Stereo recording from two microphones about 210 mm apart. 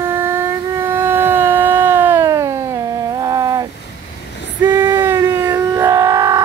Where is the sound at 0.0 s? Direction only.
10° right (ahead or behind).